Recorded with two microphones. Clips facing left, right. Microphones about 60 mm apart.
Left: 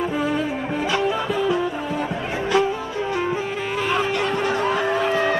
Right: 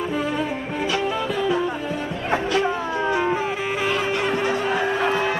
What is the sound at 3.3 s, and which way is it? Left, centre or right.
Music, centre.